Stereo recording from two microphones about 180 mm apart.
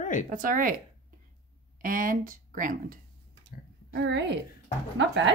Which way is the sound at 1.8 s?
50° right (ahead or behind).